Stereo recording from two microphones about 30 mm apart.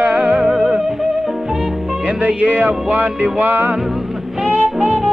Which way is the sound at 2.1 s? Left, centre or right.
Right.